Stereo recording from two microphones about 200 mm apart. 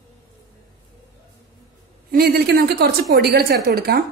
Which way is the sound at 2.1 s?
50° right (ahead or behind).